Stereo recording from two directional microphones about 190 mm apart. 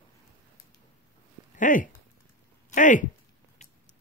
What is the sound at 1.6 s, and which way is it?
Speech, 45° left (ahead or behind).